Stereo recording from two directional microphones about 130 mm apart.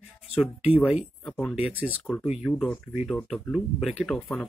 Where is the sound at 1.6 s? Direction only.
10° right (ahead or behind).